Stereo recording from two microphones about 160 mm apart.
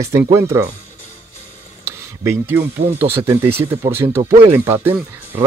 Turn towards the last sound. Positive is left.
turn(degrees=-15)  # may be behind; listen again after turning